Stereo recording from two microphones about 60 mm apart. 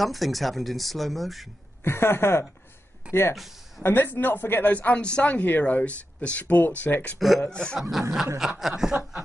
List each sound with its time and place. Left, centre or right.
0.0 s speech: centre
1.9 s speech: left
7.2 s speech: centre
7.4 s chuckle: centre
8.4 s snicker: centre